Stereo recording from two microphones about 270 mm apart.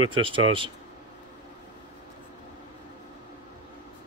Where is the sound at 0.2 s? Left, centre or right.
Right.